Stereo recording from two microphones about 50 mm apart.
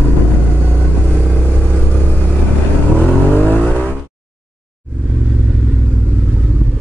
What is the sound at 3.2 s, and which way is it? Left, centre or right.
Vehicle, left.